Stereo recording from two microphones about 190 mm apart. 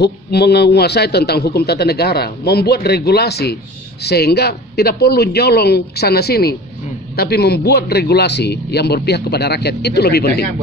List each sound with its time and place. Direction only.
0.0 s a man's voice: 60° left (ahead or behind)